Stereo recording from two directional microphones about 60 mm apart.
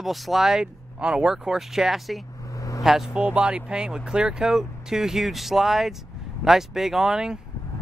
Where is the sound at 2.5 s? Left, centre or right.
Left.